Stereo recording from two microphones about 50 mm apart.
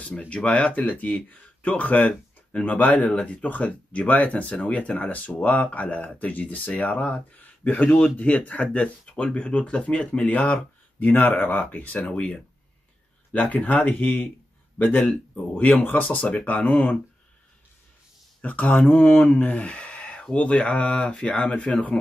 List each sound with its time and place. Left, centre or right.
0.0 s speech: left
3.1 s speech: left
3.4 s speech: left
7.3 s speech: left
11.6 s speech: left
18.4 s speech: left
19.6 s a sound: left
20.3 s speech: left